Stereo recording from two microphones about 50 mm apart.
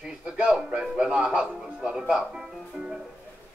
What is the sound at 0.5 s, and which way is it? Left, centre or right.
Speech, centre.